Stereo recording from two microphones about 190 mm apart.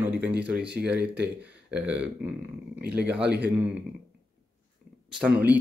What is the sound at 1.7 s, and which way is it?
Speech, 5° right (ahead or behind).